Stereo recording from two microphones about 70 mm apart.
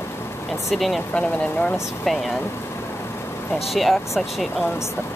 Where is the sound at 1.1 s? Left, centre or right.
Centre.